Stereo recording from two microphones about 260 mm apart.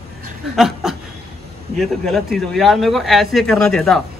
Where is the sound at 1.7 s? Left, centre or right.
Centre.